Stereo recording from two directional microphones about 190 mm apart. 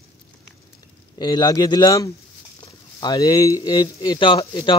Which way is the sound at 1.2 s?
20° left (ahead or behind).